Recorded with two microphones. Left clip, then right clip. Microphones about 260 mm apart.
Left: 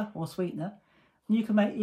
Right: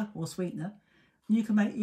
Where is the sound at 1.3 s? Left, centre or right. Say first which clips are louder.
Left 2 dB; centre.